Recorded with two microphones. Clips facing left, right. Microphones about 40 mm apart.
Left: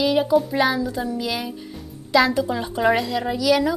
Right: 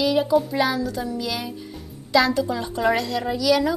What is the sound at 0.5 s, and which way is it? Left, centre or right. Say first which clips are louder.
A woman's voice: left 2 dB; centre.